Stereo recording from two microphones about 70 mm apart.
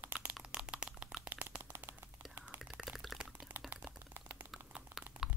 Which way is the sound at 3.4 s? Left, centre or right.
Right.